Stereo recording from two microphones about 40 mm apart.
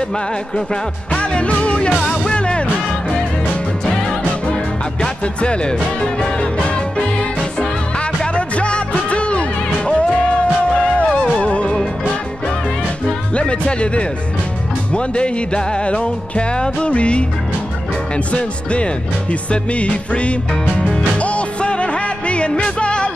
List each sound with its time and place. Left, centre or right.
1.1 s music: left
5.2 s music: left
8.4 s music: left
11.1 s music: centre
11.3 s music: left
13.3 s speech: left
14.9 s music: left